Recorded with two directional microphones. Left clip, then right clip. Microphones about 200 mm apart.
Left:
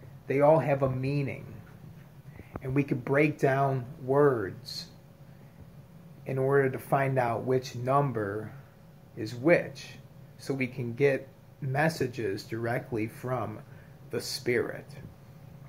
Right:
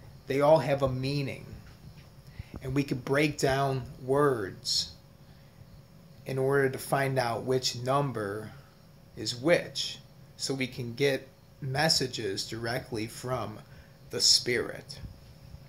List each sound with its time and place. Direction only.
0.3 s speech: 20° right (ahead or behind)
2.6 s speech: 20° right (ahead or behind)
6.2 s speech: 20° right (ahead or behind)